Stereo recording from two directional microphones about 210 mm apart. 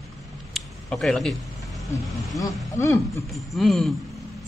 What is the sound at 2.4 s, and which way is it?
Speech, 15° left (ahead or behind).